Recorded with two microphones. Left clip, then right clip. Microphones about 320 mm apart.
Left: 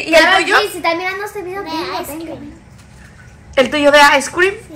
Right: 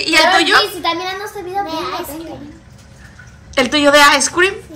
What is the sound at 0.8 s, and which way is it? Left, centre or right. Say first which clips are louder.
Speech: left 2 dB; centre.